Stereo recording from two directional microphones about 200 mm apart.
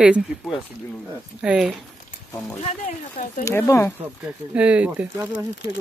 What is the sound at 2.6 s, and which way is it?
Speech, 40° left (ahead or behind).